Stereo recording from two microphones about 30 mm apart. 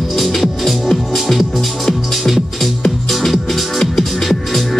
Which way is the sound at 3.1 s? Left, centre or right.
Centre.